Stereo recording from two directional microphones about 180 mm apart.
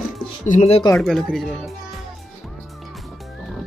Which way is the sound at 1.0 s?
Centre (ahead or behind).